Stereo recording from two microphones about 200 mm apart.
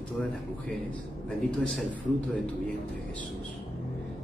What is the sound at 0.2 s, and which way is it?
Speech, 5° left (ahead or behind).